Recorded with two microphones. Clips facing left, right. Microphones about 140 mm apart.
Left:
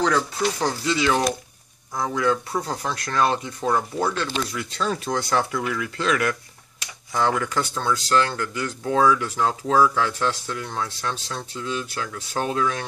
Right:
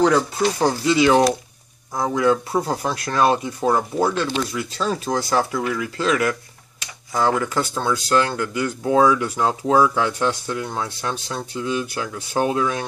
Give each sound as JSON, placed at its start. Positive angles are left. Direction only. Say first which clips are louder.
{"t": 0.0, "sound": "speech", "louder": "right 5 dB", "side_deg": -10}
{"t": 2.7, "sound": "speech", "louder": "right 4 dB", "side_deg": -5}
{"t": 3.6, "sound": "speech", "louder": "right 3 dB", "side_deg": -20}
{"t": 4.0, "sound": "speech", "louder": "right 4 dB", "side_deg": -5}